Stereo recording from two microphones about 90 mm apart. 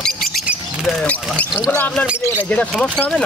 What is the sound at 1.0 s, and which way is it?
Speech, 15° left (ahead or behind).